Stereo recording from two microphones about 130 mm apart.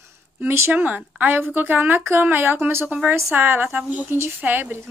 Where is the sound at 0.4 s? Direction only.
15° right (ahead or behind).